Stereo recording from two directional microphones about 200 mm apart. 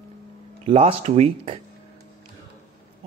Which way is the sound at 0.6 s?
30° right (ahead or behind).